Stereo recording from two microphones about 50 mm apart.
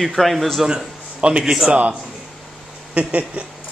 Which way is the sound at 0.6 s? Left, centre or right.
Centre.